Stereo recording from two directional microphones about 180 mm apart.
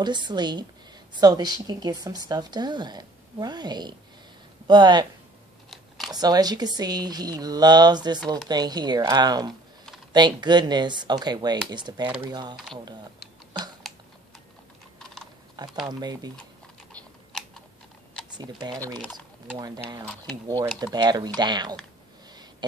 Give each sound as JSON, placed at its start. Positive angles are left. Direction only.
{"t": 0.0, "sound": "a woman's voice", "side_deg": -25}
{"t": 5.7, "sound": "a sound", "side_deg": 0}
{"t": 6.1, "sound": "a woman's voice", "side_deg": -20}
{"t": 15.0, "sound": "typing", "side_deg": 5}
{"t": 15.5, "sound": "a woman's voice", "side_deg": -25}
{"t": 16.9, "sound": "typing", "side_deg": 5}
{"t": 18.4, "sound": "a woman's voice", "side_deg": -20}
{"t": 19.1, "sound": "typing", "side_deg": -25}
{"t": 20.8, "sound": "a woman's voice", "side_deg": -25}
{"t": 22.3, "sound": "a sound", "side_deg": -25}